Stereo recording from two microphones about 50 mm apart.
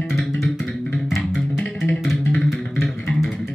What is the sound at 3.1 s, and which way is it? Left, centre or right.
Bass guitar, centre.